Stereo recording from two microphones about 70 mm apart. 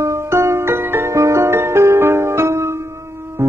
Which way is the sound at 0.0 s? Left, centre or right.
Right.